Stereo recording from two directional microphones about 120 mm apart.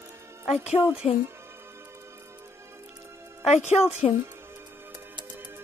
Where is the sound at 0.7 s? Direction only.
15° right (ahead or behind).